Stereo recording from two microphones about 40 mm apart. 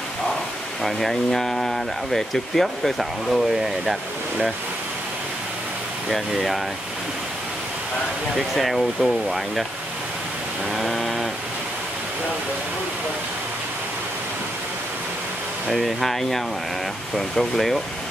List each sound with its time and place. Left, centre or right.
0.8 s speech: centre
6.0 s speech: centre
8.4 s speech: centre
10.8 s a sound: centre
15.7 s speech: centre